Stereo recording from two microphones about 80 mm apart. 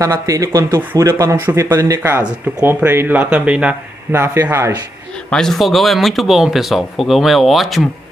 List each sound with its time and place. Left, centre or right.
0.0 s speech: right
2.0 s speech: right
4.1 s speech: right
5.3 s speech: centre